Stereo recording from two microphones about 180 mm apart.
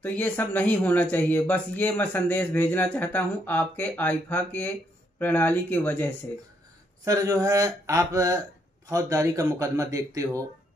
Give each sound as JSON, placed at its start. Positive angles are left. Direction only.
{"t": 0.0, "sound": "speech", "side_deg": 10}
{"t": 7.1, "sound": "a man's voice", "side_deg": -20}